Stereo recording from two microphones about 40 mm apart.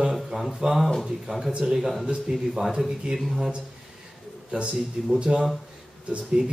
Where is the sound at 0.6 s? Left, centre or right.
Centre.